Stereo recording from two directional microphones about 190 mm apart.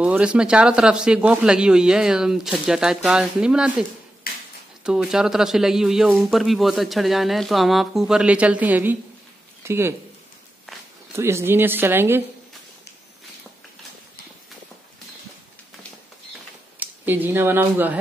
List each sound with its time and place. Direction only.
0.0 s a man's voice: 5° right (ahead or behind)
4.2 s a sound: 50° left (ahead or behind)
4.8 s a man's voice: 5° right (ahead or behind)
11.1 s a woman's voice: 15° right (ahead or behind)
16.8 s speech: 10° right (ahead or behind)